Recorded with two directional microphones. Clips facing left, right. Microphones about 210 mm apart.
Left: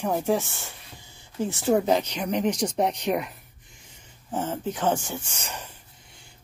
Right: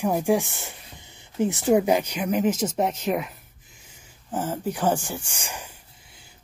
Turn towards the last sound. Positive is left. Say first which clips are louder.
# even
turn(degrees=-5)  # may be behind; listen again after turning